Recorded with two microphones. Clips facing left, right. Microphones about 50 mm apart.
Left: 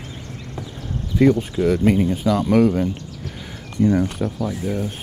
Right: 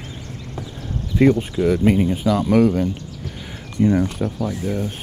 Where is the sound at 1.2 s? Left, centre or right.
Right.